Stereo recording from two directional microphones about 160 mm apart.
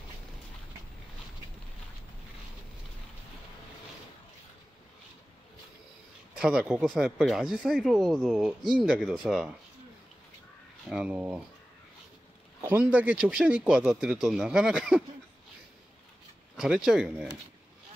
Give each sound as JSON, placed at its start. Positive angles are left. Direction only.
{"t": 6.3, "sound": "speech", "side_deg": -5}
{"t": 10.9, "sound": "speech", "side_deg": -5}
{"t": 12.6, "sound": "speech", "side_deg": -10}
{"t": 16.5, "sound": "speech", "side_deg": -5}